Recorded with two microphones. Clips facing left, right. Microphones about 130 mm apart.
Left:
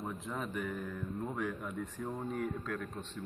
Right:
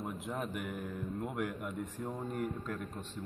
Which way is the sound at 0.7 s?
15° right (ahead or behind).